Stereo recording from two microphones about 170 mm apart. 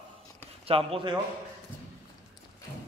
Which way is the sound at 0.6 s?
35° right (ahead or behind).